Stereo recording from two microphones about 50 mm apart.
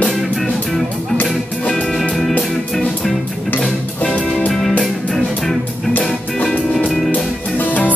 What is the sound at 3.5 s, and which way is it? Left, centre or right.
Music, left.